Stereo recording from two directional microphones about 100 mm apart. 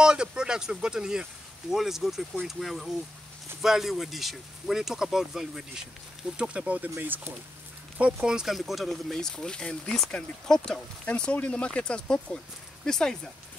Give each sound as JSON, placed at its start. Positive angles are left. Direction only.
{"t": 0.0, "sound": "speech", "side_deg": -10}
{"t": 8.0, "sound": "speech", "side_deg": -5}